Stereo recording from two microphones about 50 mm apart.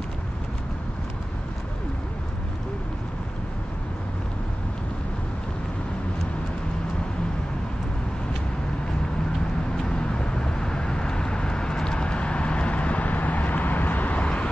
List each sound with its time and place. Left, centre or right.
9.8 s vehicle: centre